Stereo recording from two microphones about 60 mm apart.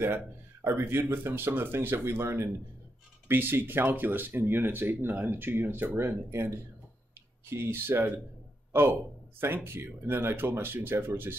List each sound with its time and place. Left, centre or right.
0.7 s speech: right
9.4 s speech: right